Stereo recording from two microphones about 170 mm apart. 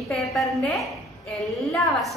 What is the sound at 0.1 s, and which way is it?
A woman's voice, centre (ahead or behind).